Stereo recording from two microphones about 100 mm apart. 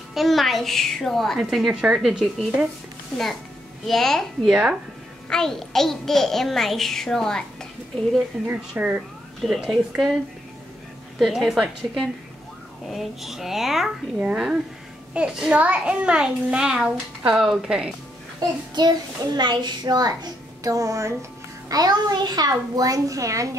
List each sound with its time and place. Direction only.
0.1 s a child's voice: centre (ahead or behind)
3.8 s a child's voice: centre (ahead or behind)
8.5 s a child's voice: 15° right (ahead or behind)
9.4 s a child's voice: centre (ahead or behind)
11.1 s a child's voice: 5° right (ahead or behind)
18.8 s a child's voice: 45° right (ahead or behind)